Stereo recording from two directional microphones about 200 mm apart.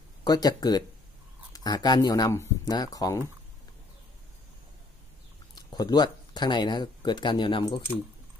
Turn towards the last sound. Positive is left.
turn(degrees=25)  # may be behind; listen again after turning